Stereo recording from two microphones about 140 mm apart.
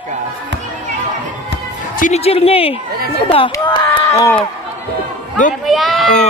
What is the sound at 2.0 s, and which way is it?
Speech, 65° left (ahead or behind).